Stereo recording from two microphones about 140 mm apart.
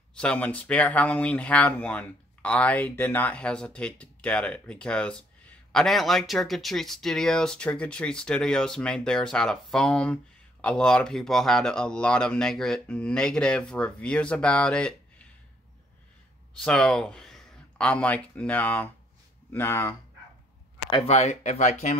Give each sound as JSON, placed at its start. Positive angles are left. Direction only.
{"t": 0.1, "sound": "speech", "side_deg": 5}
{"t": 16.5, "sound": "speech", "side_deg": 5}
{"t": 20.9, "sound": "speech", "side_deg": 45}